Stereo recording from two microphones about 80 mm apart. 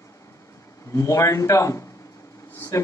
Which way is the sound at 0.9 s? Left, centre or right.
Left.